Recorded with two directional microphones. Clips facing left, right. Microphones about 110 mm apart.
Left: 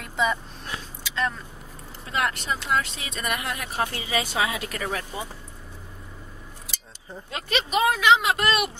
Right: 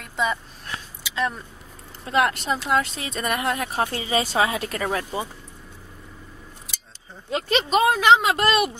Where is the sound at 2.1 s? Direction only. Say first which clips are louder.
Right 5 dB; 35° right (ahead or behind).